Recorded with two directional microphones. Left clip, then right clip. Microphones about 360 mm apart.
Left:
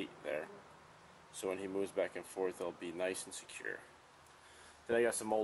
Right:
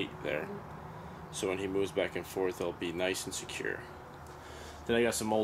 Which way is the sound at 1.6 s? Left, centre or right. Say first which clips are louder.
Right 4 dB; centre.